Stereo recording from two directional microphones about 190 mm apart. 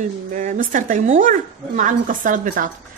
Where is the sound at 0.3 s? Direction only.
45° right (ahead or behind).